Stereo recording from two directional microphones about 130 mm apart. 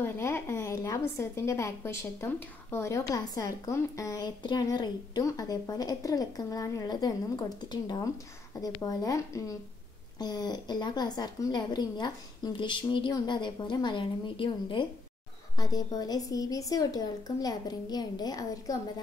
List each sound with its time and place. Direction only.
0.0 s a woman's voice: 15° left (ahead or behind); by 14.9 s 40° left (ahead or behind)
15.5 s a woman's voice: 30° left (ahead or behind)